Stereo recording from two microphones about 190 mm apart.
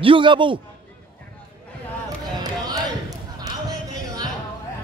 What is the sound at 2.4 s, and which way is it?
Basketball bounce, 20° right (ahead or behind).